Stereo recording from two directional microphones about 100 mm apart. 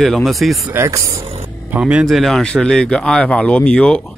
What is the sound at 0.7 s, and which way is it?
Speech, 30° right (ahead or behind).